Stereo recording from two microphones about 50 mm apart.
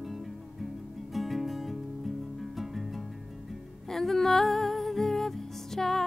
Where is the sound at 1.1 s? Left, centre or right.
Centre.